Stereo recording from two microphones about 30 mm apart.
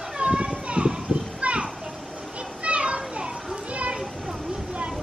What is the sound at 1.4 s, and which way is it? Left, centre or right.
Children playing, right.